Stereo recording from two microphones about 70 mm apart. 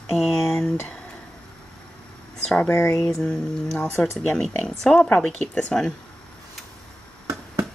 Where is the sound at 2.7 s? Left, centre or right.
Left.